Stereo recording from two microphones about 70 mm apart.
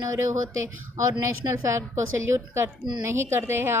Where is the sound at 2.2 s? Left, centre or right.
Right.